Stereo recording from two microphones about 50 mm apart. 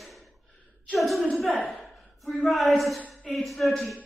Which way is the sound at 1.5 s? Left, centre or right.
Left.